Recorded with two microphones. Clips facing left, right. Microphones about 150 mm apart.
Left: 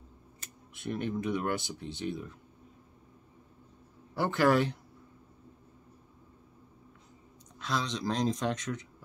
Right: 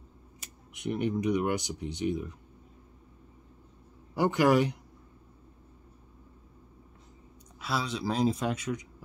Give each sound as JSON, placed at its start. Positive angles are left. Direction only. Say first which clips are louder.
{"t": 0.7, "sound": "speech", "louder": "right 4 dB", "side_deg": -15}
{"t": 4.1, "sound": "speech", "louder": "right 2 dB", "side_deg": -15}
{"t": 7.6, "sound": "speech", "louder": "right 1 dB", "side_deg": -5}